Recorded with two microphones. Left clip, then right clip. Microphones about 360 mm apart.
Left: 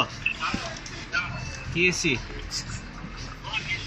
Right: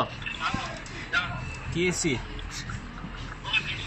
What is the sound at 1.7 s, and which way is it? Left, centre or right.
Speech, left.